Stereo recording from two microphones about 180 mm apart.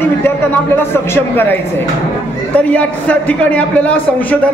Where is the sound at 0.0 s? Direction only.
10° left (ahead or behind).